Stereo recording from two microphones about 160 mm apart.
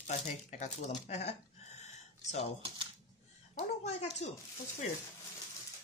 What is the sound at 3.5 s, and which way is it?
Speech, 45° left (ahead or behind).